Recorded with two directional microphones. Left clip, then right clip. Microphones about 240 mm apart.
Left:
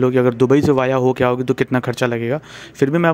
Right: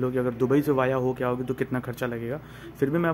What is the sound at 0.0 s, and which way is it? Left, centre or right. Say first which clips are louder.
Speech: left 11 dB; left.